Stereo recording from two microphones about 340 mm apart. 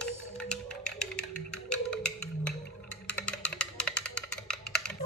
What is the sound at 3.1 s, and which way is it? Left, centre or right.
Music, centre.